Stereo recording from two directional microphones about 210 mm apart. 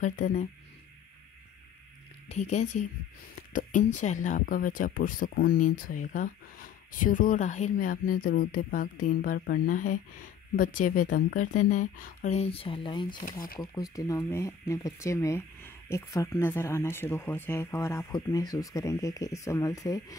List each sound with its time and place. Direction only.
0.0 s speech: 35° left (ahead or behind)
2.2 s speech: 35° left (ahead or behind); by 20.2 s 15° left (ahead or behind)